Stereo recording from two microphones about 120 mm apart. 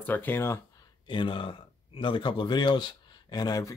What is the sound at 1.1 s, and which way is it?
Speech, 45° left (ahead or behind).